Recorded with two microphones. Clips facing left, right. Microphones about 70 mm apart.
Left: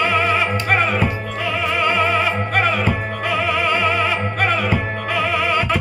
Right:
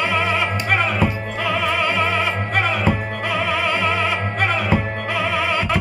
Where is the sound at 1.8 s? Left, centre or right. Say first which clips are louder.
Left 2 dB; left.